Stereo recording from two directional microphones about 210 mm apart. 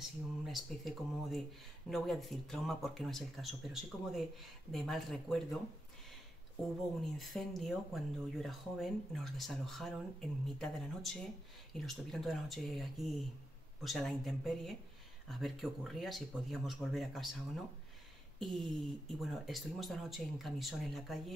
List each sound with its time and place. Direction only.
0.0 s speech: centre (ahead or behind)
7.2 s speech: centre (ahead or behind)